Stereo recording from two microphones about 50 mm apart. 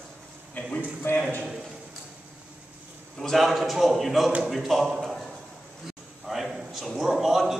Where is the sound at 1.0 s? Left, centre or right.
Left.